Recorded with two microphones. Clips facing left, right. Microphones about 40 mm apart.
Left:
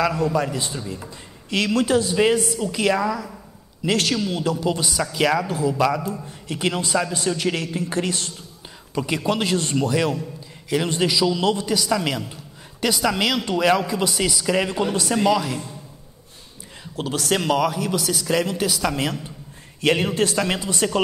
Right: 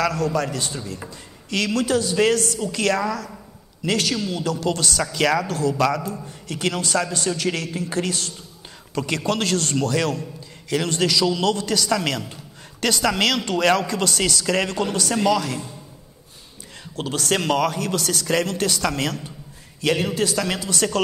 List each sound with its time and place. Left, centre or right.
0.0 s a man's voice: left
1.5 s a man's voice: left
2.1 s a man's voice: centre
4.3 s a man's voice: left
4.6 s a man's voice: centre
6.4 s a man's voice: left
8.9 s a man's voice: centre
16.9 s a man's voice: centre
17.6 s a man's voice: centre
19.8 s a man's voice: left